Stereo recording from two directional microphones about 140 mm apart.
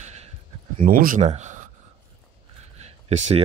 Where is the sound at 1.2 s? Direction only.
55° right (ahead or behind).